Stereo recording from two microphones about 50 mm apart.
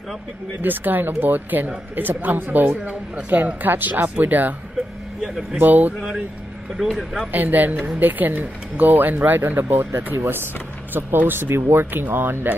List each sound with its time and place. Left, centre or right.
0.6 s speech: right
5.2 s speech: centre
5.6 s speech: right
6.8 s speech: centre
7.3 s speech: right